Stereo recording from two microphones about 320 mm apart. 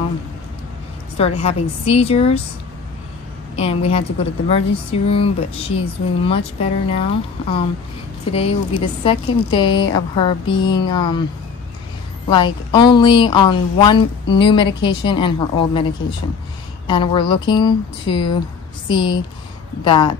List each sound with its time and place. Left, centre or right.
1.1 s a woman's voice: centre
3.5 s speech: centre
12.3 s speech: centre